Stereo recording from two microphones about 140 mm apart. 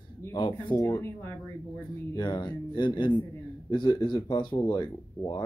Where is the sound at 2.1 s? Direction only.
35° left (ahead or behind).